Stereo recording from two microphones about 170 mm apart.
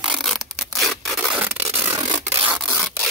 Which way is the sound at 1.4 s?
10° right (ahead or behind).